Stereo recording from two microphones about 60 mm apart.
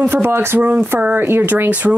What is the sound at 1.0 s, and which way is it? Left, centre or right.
Speech, right.